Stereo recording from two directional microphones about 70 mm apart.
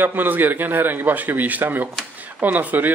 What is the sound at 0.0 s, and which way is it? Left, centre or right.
A man's voice, right.